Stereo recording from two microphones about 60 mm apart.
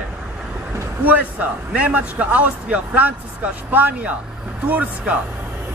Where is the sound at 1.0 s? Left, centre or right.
Right.